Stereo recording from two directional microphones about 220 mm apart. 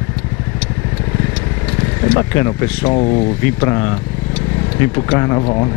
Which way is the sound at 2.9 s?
30° left (ahead or behind).